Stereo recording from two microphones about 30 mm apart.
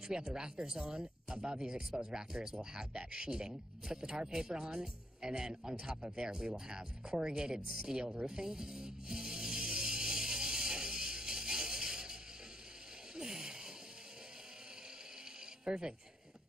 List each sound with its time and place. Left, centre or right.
0.1 s speech: right
8.4 s music: right
13.1 s a sound: right
15.6 s speech: right